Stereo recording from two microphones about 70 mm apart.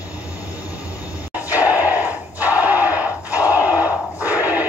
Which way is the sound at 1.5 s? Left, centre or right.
Right.